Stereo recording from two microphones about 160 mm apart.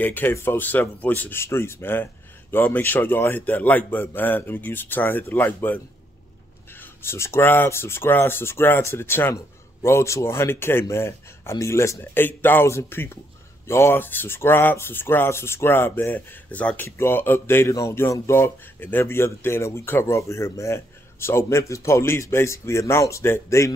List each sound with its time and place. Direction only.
0.0 s speech: 10° left (ahead or behind)
6.8 s speech: 15° left (ahead or behind)